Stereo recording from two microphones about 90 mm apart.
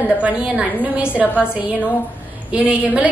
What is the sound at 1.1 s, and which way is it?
Speech, 20° left (ahead or behind).